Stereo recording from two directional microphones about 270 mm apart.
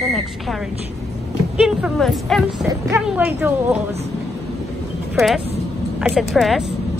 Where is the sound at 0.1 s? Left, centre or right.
Centre.